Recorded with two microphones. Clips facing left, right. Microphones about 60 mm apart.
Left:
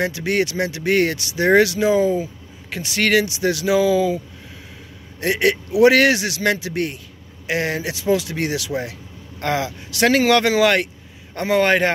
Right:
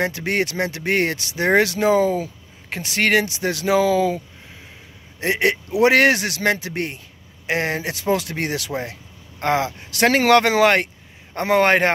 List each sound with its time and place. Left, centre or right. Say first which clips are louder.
0.0 s speech: left 1 dB; right
5.2 s speech: left 1 dB; right